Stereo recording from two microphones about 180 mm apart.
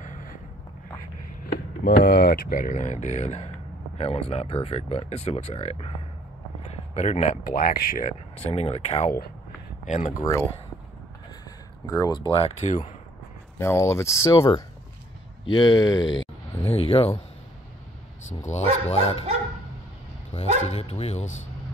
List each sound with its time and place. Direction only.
0.0 s a sound: 45° left (ahead or behind)
1.4 s speech: 65° left (ahead or behind)
8.4 s speech: 35° left (ahead or behind)
11.8 s speech: 20° left (ahead or behind); by 12.9 s 40° left (ahead or behind)
13.6 s speech: 15° left (ahead or behind)
15.4 s speech: 25° left (ahead or behind)
16.2 s a sound: 30° left (ahead or behind)
18.4 s speech: 35° left (ahead or behind)
20.2 s speech: 35° left (ahead or behind)